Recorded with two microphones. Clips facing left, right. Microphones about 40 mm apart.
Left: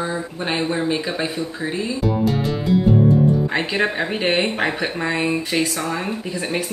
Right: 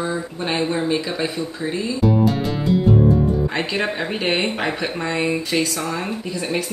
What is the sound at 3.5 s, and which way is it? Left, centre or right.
Speech, centre.